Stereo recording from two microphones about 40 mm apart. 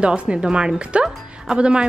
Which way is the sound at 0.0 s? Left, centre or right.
Right.